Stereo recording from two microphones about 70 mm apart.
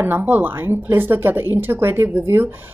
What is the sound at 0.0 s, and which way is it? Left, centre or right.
Speech, right.